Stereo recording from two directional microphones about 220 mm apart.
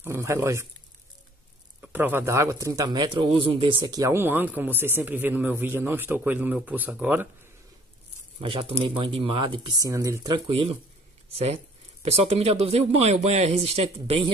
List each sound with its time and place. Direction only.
0.0 s speech: 10° right (ahead or behind)
1.8 s speech: 10° right (ahead or behind)
8.4 s speech: 25° right (ahead or behind)